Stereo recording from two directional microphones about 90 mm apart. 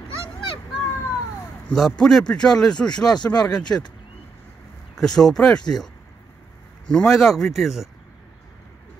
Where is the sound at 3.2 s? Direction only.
25° left (ahead or behind).